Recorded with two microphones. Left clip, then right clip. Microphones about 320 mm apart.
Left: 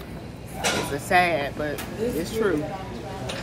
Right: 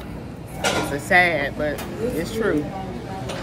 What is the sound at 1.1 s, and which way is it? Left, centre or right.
Speech, centre.